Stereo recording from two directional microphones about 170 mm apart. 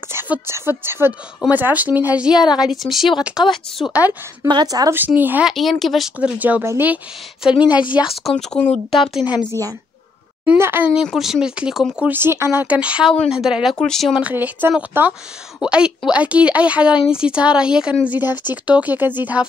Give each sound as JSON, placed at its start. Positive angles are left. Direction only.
{"t": 0.1, "sound": "a woman's voice", "side_deg": -15}
{"t": 4.5, "sound": "speech", "side_deg": -25}
{"t": 5.5, "sound": "speech", "side_deg": 0}
{"t": 7.7, "sound": "a woman's voice", "side_deg": 25}
{"t": 8.0, "sound": "speech", "side_deg": 0}
{"t": 9.5, "sound": "a woman's voice", "side_deg": -20}